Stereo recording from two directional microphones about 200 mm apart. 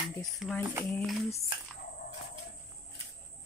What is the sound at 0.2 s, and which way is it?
Speech, centre (ahead or behind).